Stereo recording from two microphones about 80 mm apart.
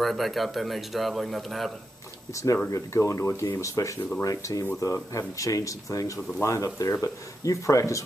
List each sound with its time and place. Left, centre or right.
0.0 s a man's voice: centre
2.3 s speech: left